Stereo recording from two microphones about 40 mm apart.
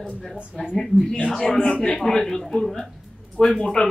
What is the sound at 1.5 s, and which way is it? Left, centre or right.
Speech, left.